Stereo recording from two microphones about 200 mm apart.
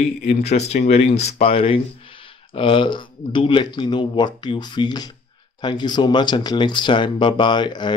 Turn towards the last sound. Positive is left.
turn(degrees=20)  # may be behind; listen again after turning